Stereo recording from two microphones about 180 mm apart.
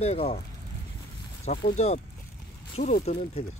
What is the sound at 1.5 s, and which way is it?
Speech, 35° left (ahead or behind).